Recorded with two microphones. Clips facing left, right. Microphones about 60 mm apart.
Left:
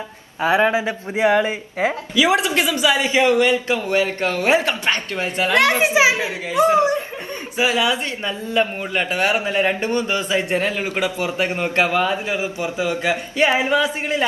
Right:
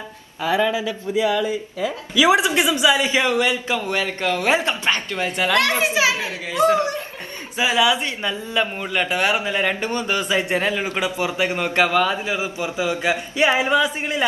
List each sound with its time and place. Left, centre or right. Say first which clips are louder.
0.4 s a man's voice: left 3 dB; left
2.1 s a woman's voice: right 2 dB; centre
3.0 s speech: left 3 dB; left
3.3 s a man's voice: left 3 dB; centre
3.7 s a man's voice: left 3 dB; left
7.5 s a man's voice: right 1 dB; left
12.7 s a man's voice: even; centre